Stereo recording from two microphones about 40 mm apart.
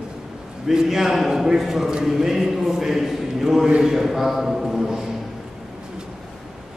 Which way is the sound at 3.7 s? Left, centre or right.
Right.